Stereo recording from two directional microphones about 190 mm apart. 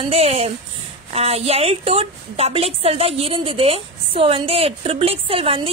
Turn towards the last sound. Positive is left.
turn(degrees=-30)  # may be behind; listen again after turning